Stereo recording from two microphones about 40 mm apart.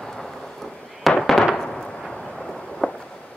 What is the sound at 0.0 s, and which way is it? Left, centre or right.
Thunder, centre.